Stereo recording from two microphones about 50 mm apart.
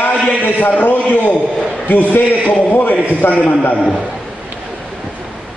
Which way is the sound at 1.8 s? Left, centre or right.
Left.